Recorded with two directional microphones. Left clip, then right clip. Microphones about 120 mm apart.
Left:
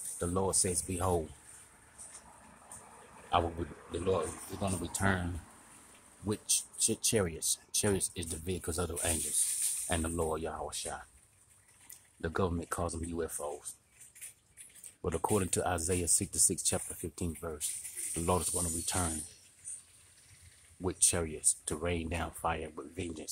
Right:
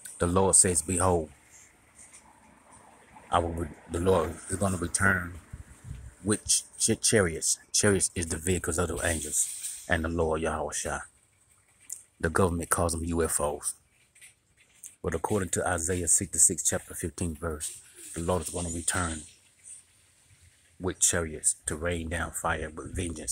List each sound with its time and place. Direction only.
0.2 s speech: 40° right (ahead or behind)
3.9 s speech: 30° right (ahead or behind)
6.2 s speech: 30° right (ahead or behind)
12.2 s speech: 35° right (ahead or behind)
15.0 s speech: 10° right (ahead or behind)
16.9 s speech: 25° right (ahead or behind)
18.1 s speech: centre (ahead or behind)
18.6 s speech: 15° right (ahead or behind)
20.8 s speech: 10° right (ahead or behind)